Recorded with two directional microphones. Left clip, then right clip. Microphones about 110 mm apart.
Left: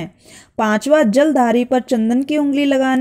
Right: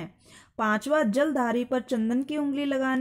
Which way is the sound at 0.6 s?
30° left (ahead or behind).